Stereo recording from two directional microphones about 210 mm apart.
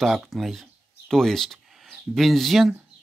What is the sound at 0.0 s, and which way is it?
Speech, centre (ahead or behind).